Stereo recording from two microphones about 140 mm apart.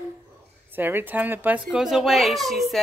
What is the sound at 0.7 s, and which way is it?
A child's voice, 15° right (ahead or behind).